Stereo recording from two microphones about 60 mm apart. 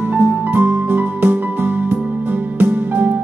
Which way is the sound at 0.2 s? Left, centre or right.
Right.